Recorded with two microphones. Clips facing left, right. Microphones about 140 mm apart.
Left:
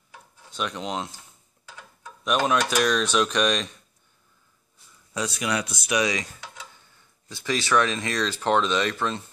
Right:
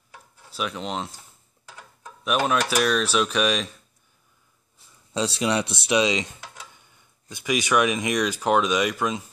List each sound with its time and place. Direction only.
0.5 s speech: 5° right (ahead or behind)
2.2 s speech: 5° right (ahead or behind)
5.1 s speech: 30° right (ahead or behind); by 9.3 s 10° right (ahead or behind)